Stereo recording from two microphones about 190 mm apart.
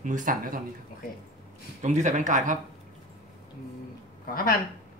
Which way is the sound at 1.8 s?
40° right (ahead or behind).